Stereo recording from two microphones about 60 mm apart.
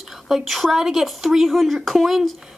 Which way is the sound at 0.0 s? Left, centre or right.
Centre.